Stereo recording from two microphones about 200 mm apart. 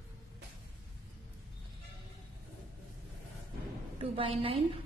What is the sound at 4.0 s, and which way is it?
Speech, 25° right (ahead or behind).